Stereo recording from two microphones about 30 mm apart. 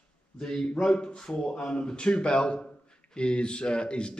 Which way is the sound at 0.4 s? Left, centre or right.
Left.